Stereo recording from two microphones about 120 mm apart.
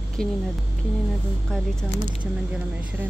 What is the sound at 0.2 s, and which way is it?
Speech, 5° left (ahead or behind).